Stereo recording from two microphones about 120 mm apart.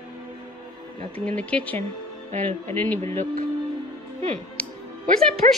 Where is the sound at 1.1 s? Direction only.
10° left (ahead or behind).